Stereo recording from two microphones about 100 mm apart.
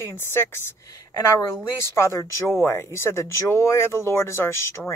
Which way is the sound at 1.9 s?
25° left (ahead or behind).